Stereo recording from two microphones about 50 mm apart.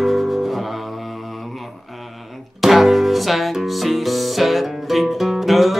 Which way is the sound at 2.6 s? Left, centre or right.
Centre.